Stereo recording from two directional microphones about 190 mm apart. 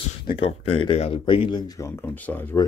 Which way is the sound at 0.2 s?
25° left (ahead or behind).